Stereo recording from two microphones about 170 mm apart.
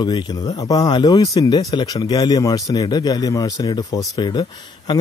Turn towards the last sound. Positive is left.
turn(degrees=25)  # may be behind; listen again after turning